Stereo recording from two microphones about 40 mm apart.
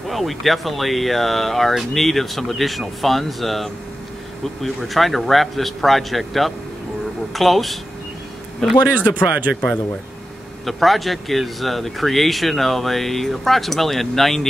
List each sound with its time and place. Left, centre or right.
0.1 s speech: centre
8.8 s speech: right
10.6 s speech: centre